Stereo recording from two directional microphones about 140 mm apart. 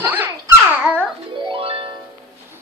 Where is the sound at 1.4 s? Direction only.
40° right (ahead or behind).